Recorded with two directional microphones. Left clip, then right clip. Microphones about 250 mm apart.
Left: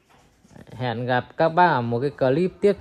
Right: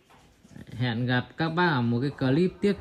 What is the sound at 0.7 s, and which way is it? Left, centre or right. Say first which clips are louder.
Speech: left 5 dB; centre.